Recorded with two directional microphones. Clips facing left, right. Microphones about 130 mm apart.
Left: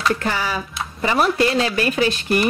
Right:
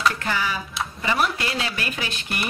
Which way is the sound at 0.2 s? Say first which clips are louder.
Left 3 dB; 40° left (ahead or behind).